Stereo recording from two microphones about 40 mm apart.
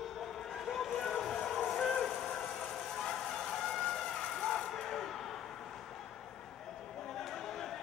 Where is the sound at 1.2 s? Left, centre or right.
Centre.